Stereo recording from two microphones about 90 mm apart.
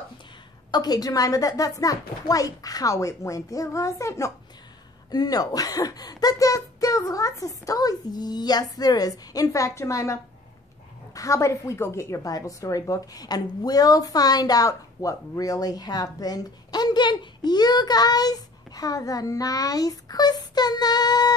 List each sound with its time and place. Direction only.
0.7 s a woman's voice: 50° left (ahead or behind)
5.1 s a woman's voice: 45° left (ahead or behind)
11.1 s a woman's voice: 35° left (ahead or behind)